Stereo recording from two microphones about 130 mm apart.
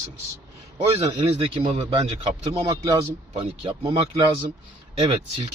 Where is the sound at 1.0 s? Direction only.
45° right (ahead or behind).